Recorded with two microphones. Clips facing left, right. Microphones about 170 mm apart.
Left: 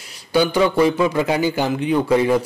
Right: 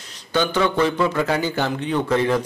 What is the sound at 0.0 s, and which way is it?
A man's voice, 10° left (ahead or behind).